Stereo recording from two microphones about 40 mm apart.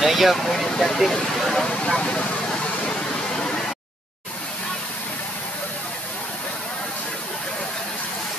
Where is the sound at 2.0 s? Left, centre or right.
Left.